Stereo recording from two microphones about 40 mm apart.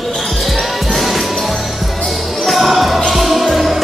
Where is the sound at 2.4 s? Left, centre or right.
Centre.